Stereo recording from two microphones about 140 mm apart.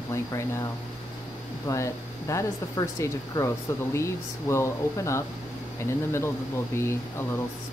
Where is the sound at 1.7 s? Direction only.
20° left (ahead or behind).